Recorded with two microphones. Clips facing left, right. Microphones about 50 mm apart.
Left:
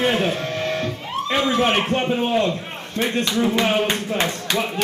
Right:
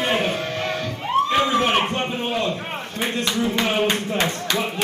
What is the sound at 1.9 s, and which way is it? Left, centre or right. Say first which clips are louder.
Speech: left 4 dB; centre.